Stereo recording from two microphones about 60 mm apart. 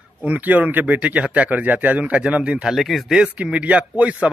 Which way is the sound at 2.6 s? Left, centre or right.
Centre.